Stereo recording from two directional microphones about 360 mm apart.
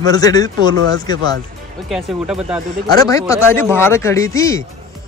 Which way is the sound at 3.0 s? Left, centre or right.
Centre.